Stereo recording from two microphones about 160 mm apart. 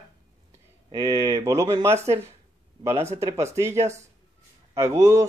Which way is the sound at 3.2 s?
20° right (ahead or behind).